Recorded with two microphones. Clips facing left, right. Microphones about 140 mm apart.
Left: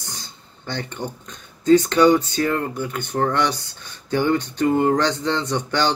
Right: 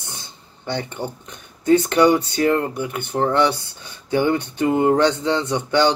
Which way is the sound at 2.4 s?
25° right (ahead or behind).